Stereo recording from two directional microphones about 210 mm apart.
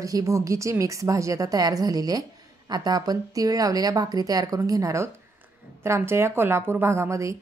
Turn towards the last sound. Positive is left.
turn(degrees=-15)  # may be behind; listen again after turning